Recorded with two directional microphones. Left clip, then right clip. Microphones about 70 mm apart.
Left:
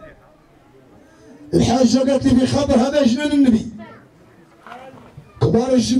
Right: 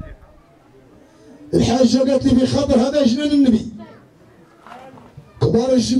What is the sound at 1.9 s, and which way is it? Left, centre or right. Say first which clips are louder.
A man's voice: even; left.